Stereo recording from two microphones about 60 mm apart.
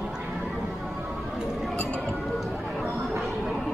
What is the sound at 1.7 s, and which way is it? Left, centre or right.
Chink, centre.